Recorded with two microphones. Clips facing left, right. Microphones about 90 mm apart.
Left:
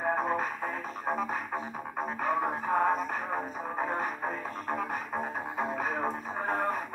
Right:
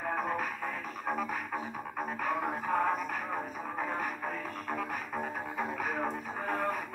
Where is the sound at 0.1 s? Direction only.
30° left (ahead or behind).